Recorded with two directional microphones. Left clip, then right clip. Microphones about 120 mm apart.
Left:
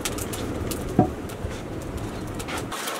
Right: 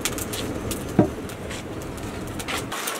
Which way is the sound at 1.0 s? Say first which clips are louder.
Right 1 dB; 45° right (ahead or behind).